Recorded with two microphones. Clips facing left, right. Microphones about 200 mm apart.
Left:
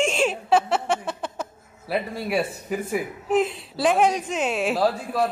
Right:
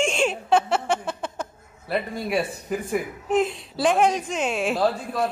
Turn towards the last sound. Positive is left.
turn(degrees=0)  # may be behind; listen again after turning